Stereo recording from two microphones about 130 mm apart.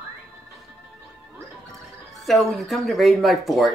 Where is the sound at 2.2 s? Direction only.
Centre (ahead or behind).